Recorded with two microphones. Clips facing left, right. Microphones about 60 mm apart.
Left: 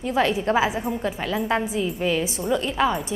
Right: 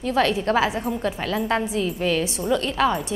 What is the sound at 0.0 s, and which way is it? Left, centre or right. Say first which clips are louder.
Speech: right 1 dB; centre.